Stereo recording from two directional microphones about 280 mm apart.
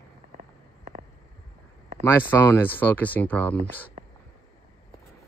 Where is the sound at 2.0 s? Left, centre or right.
Centre.